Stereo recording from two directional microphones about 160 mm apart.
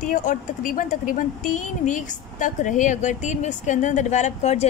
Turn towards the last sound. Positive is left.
turn(degrees=45)  # may be behind; listen again after turning